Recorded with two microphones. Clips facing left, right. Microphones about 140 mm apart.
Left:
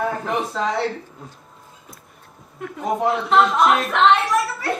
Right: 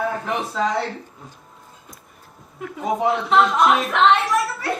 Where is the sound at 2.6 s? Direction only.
Centre (ahead or behind).